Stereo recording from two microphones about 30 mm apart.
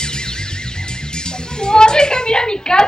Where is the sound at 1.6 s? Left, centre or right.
Left.